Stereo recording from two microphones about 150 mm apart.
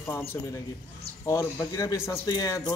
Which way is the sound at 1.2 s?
20° left (ahead or behind).